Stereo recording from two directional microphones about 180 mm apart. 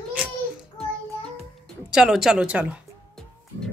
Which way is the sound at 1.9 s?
5° right (ahead or behind).